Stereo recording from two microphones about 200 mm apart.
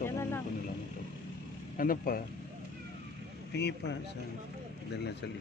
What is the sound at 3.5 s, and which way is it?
Speech, 60° left (ahead or behind).